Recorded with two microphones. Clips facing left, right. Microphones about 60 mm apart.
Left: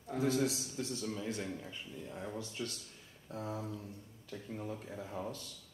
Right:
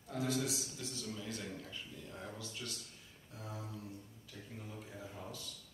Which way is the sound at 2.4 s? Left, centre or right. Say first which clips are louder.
Left 5 dB; left.